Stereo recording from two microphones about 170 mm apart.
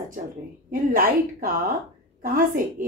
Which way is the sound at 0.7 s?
55° right (ahead or behind).